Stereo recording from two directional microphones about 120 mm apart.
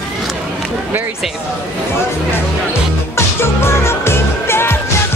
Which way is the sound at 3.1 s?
20° left (ahead or behind).